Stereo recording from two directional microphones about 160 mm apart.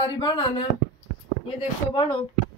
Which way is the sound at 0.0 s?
25° left (ahead or behind).